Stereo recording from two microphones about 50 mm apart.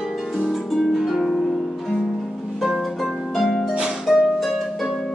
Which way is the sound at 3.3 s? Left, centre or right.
Centre.